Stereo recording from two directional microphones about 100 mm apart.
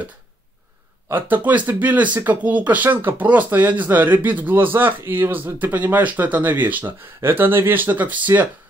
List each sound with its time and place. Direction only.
1.0 s speech: 20° right (ahead or behind)